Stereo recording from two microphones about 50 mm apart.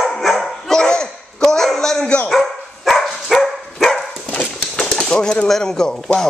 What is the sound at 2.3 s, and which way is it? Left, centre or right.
Dog, centre.